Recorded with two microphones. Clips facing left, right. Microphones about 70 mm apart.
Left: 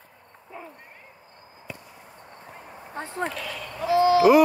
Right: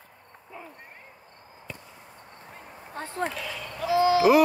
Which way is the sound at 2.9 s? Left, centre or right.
Left.